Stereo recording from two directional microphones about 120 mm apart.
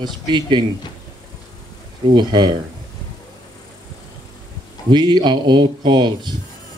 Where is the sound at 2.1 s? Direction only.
40° right (ahead or behind).